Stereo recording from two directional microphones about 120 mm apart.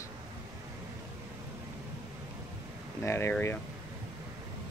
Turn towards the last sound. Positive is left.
turn(degrees=20)  # may be behind; listen again after turning